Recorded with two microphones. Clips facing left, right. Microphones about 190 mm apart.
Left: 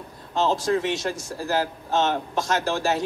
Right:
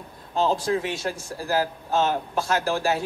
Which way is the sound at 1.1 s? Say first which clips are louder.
Left 2 dB; 40° left (ahead or behind).